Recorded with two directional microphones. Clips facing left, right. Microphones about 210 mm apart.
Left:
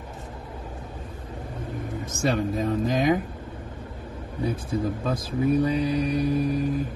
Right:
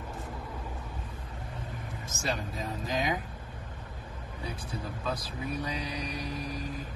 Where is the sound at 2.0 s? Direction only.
55° left (ahead or behind).